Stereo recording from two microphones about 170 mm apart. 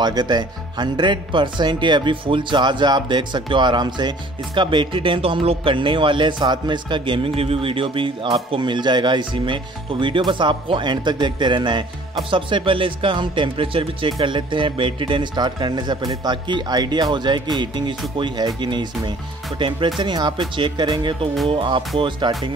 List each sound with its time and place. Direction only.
0.0 s speech: 25° right (ahead or behind)